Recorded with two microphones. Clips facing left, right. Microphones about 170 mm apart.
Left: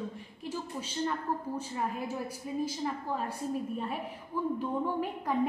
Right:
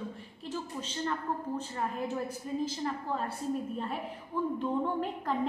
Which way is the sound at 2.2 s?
10° left (ahead or behind).